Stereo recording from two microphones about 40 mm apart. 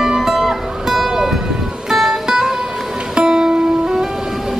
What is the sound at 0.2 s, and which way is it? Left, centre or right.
Music, centre.